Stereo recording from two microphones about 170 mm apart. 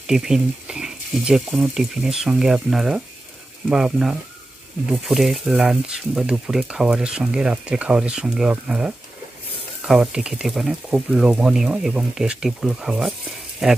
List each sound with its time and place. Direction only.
0.0 s speech: 5° right (ahead or behind)